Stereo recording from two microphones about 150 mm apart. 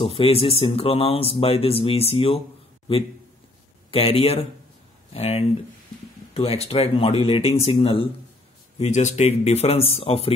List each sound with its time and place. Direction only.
0.0 s speech: 40° left (ahead or behind)
3.9 s speech: 40° left (ahead or behind)